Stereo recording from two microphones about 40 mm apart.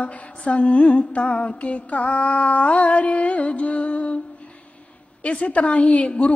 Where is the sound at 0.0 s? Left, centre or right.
Left.